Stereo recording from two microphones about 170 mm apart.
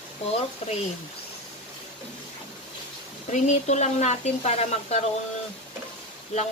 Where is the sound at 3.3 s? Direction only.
45° left (ahead or behind).